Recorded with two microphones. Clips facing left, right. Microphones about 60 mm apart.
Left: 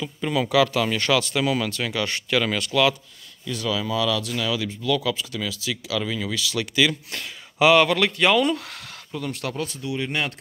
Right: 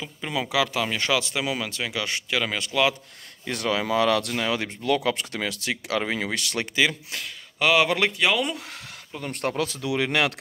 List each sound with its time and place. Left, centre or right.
0.0 s speech: centre
3.4 s speech: right
6.6 s speech: right
7.5 s speech: centre
7.8 s speech: centre
8.2 s speech: centre
9.3 s speech: right
9.8 s speech: right